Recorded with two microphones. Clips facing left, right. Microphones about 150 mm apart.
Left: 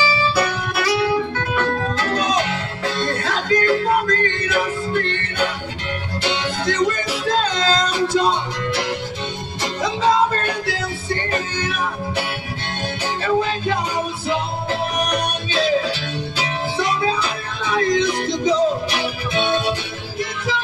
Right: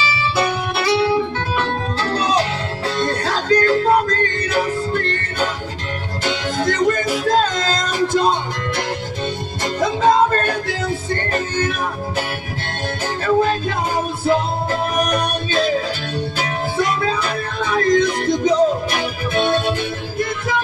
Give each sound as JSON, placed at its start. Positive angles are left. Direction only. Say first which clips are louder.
{"t": 0.4, "sound": "music", "louder": "right 1 dB", "side_deg": -25}